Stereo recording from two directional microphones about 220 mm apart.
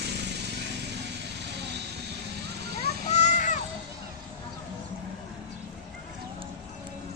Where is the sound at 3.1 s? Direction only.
30° left (ahead or behind).